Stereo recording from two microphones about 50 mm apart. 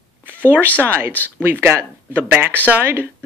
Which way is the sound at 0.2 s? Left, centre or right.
Right.